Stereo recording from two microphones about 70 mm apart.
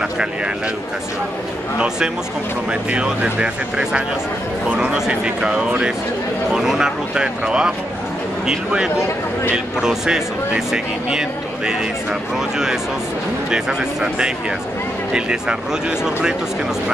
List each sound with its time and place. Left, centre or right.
2.7 s speech: centre
8.9 s speech: left
9.8 s speech: centre